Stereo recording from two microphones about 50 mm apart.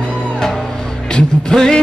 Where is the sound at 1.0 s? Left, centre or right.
Centre.